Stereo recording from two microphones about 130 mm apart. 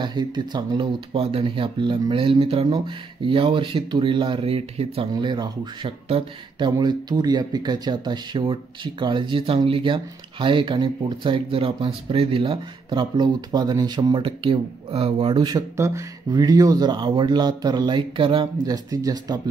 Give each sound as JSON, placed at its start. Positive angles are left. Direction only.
{"t": 0.0, "sound": "speech", "side_deg": -35}
{"t": 5.1, "sound": "speech", "side_deg": -35}
{"t": 16.3, "sound": "speech", "side_deg": -30}
{"t": 18.7, "sound": "speech", "side_deg": -25}